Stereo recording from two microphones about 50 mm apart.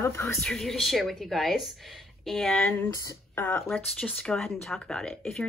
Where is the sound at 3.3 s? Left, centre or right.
Left.